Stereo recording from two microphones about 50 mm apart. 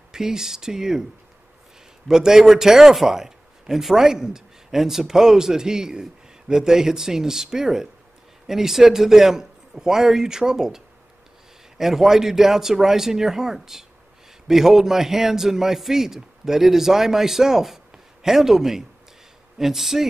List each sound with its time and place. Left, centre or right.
0.1 s a man's voice: centre
2.0 s a man's voice: centre
11.8 s a man's voice: centre